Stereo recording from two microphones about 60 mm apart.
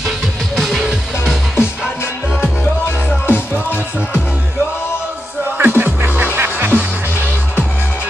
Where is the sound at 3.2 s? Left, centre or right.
Left.